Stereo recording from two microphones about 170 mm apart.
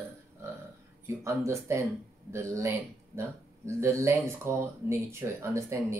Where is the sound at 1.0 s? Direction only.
15° right (ahead or behind).